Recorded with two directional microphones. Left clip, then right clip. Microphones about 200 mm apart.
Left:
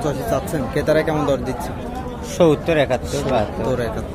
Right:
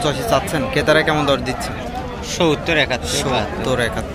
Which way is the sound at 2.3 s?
45° left (ahead or behind).